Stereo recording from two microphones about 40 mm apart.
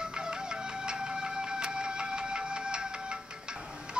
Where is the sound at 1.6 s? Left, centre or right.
Right.